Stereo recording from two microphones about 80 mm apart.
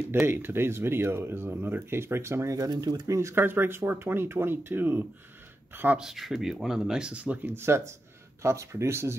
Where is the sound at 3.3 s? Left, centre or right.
Right.